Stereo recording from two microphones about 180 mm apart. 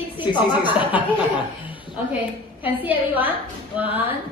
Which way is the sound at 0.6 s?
10° right (ahead or behind).